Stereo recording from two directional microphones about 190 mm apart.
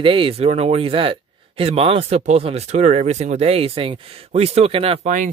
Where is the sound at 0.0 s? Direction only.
25° right (ahead or behind).